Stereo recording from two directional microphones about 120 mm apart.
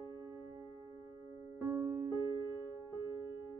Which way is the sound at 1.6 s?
25° right (ahead or behind).